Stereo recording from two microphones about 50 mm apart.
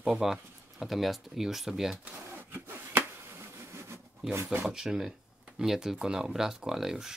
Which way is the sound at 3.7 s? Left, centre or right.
Right.